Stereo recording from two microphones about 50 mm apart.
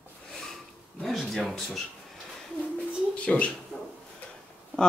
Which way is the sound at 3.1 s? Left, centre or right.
Left.